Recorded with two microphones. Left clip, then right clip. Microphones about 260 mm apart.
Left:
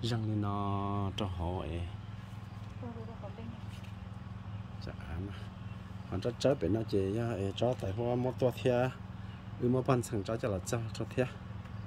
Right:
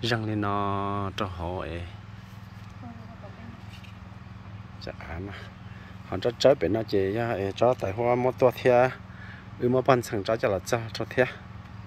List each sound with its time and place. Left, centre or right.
0.0 s speech: centre
6.0 s speech: centre
9.9 s speech: centre
10.2 s speech: centre